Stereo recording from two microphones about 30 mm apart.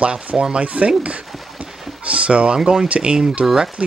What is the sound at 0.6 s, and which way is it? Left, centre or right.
Speech, right.